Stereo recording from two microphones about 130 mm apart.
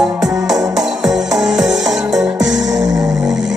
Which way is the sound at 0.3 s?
5° right (ahead or behind).